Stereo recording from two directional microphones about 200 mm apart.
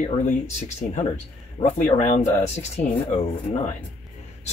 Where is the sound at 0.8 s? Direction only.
40° left (ahead or behind).